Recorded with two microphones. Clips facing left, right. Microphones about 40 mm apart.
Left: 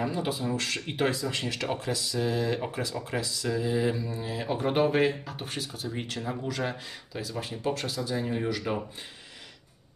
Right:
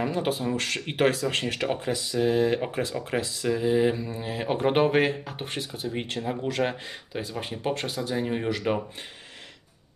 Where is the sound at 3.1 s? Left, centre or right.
Right.